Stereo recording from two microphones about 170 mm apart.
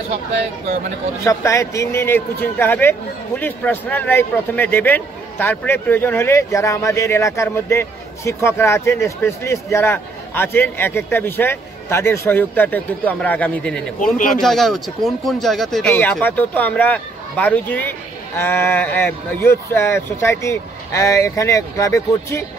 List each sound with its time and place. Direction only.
1.2 s speech: 20° left (ahead or behind)
14.1 s speech: 50° left (ahead or behind)
14.4 s speech: centre (ahead or behind); by 22.4 s 15° left (ahead or behind)